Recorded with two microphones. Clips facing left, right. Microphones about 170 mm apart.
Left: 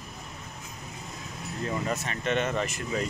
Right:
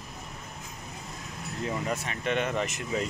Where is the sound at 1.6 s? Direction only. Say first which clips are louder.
Left 1 dB; 10° right (ahead or behind).